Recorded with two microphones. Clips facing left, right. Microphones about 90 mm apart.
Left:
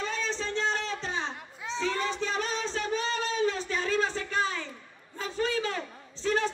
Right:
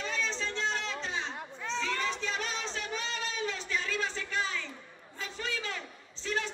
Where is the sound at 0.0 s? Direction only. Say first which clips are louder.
Left 3 dB; 40° left (ahead or behind).